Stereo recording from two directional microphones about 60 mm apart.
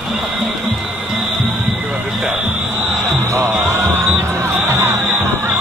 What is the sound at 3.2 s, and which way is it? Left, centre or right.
Music, right.